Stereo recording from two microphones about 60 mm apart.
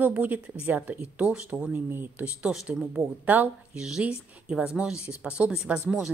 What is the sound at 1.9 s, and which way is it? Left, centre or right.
Speech, right.